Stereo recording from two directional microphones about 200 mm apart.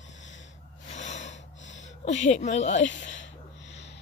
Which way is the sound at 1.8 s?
35° left (ahead or behind).